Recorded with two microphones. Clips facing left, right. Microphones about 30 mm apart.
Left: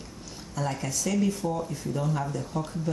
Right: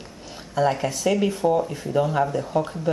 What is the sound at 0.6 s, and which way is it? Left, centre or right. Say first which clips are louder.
Speech: right 9 dB; right.